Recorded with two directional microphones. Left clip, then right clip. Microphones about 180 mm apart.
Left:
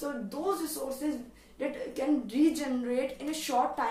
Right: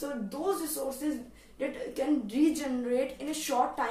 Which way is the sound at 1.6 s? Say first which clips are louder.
Even; 20° left (ahead or behind).